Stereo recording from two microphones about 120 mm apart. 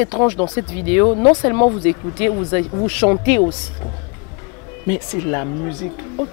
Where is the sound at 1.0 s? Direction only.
35° left (ahead or behind).